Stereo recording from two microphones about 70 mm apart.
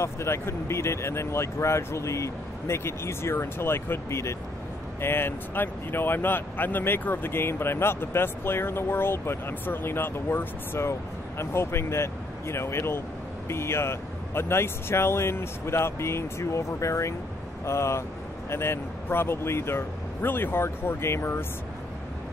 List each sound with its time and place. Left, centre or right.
0.0 s speech: left